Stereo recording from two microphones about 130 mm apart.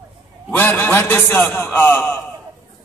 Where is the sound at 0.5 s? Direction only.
15° left (ahead or behind).